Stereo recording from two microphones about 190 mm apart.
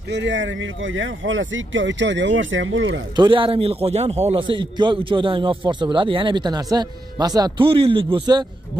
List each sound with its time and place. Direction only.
0.1 s speech: 70° right (ahead or behind); by 3.0 s 85° right
3.2 s a man's voice: 25° right (ahead or behind)